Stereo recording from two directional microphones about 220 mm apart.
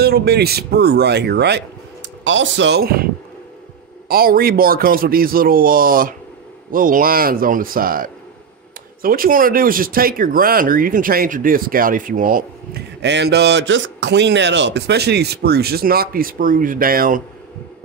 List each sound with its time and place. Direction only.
0.0 s speech: 45° right (ahead or behind)
4.1 s speech: 40° right (ahead or behind)